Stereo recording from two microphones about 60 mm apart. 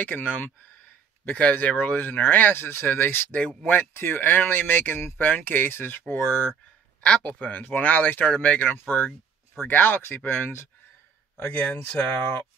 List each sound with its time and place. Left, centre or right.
0.0 s speech: left
3.3 s speech: left
3.9 s speech: left
11.5 s speech: left